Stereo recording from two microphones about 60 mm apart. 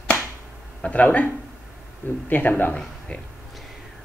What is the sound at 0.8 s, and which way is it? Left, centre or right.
Speech, left.